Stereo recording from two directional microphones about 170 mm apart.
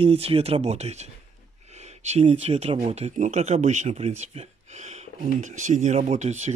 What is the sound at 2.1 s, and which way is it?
Speech, 35° right (ahead or behind).